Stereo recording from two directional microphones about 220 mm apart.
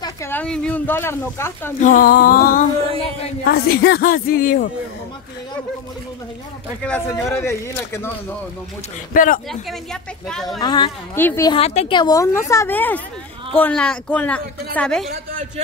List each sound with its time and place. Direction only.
0.0 s speech: 10° left (ahead or behind)
1.8 s a woman's voice: 40° left (ahead or behind)
7.1 s a woman's voice: 10° left (ahead or behind)
9.1 s a woman's voice: 40° left (ahead or behind)
10.2 s a woman's voice: centre (ahead or behind)
10.6 s a woman's voice: 20° left (ahead or behind)
11.5 s a woman's voice: 30° left (ahead or behind); by 15.0 s 5° left (ahead or behind)